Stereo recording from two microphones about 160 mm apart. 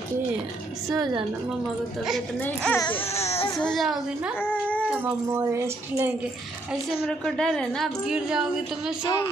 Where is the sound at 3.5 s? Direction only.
Centre (ahead or behind).